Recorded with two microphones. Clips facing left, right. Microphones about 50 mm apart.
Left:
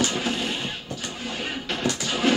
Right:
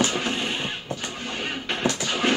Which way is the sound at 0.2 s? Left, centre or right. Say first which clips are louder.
Even; centre.